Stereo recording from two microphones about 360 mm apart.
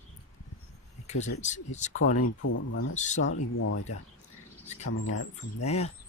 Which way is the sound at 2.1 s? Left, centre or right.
Left.